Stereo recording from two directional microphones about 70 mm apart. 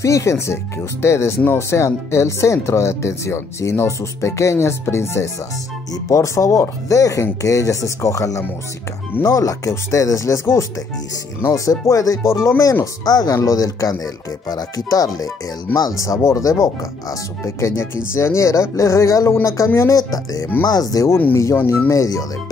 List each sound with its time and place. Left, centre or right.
0.0 s speech: left
12.2 s speech: left
13.0 s speech: left
17.6 s speech: left
19.9 s speech: left